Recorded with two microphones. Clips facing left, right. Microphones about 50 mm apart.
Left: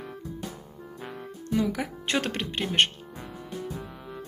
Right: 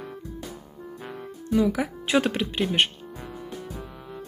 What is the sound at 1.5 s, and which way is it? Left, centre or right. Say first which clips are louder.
Speech: right 4 dB; centre.